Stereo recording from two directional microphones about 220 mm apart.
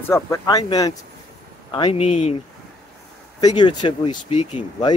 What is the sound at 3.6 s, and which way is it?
Speech, 20° left (ahead or behind).